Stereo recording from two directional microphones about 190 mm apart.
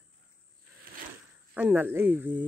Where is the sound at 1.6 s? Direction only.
10° right (ahead or behind).